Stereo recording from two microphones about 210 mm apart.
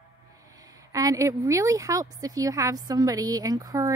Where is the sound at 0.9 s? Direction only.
15° right (ahead or behind).